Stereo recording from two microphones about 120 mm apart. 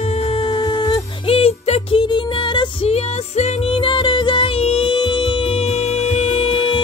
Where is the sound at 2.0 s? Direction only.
40° left (ahead or behind).